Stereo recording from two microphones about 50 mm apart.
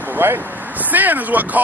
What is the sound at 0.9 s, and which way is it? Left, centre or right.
Speech, right.